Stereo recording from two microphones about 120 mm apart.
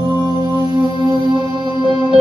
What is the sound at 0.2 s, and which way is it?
Music, 40° right (ahead or behind).